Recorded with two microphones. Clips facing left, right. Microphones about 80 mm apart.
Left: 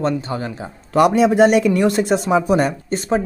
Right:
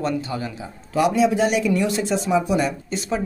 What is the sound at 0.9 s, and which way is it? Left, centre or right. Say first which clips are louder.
A man's voice: left 5 dB; left.